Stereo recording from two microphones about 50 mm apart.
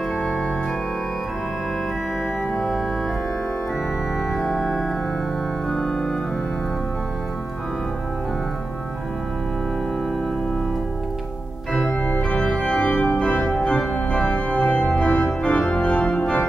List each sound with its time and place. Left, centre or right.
2.5 s organ: centre
4.3 s organ: centre
11.9 s organ: left
12.2 s organ: centre